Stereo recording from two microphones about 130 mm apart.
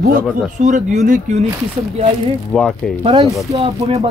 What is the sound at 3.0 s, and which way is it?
Speech, 30° right (ahead or behind).